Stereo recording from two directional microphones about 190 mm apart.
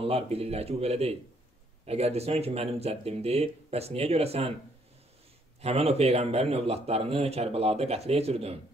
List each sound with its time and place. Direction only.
0.0 s speech: 30° right (ahead or behind)
5.6 s speech: 35° right (ahead or behind)